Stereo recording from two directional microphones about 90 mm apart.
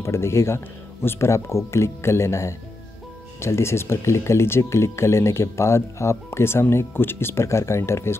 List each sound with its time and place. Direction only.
0.0 s speech: 30° left (ahead or behind)